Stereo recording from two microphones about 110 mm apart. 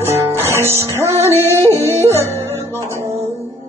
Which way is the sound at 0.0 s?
25° right (ahead or behind).